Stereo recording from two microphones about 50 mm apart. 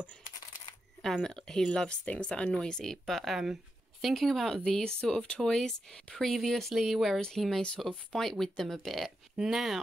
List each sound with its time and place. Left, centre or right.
1.2 s speech: centre
7.2 s speech: centre